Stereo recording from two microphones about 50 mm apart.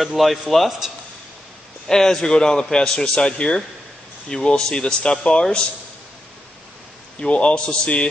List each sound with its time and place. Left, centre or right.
0.0 s a man's voice: centre
1.9 s a man's voice: centre
7.2 s a man's voice: left